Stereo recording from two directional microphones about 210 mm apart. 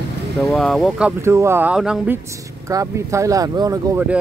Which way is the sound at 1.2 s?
10° right (ahead or behind).